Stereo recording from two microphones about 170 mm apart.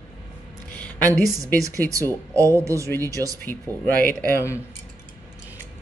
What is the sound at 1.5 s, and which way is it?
A woman's voice, 20° right (ahead or behind).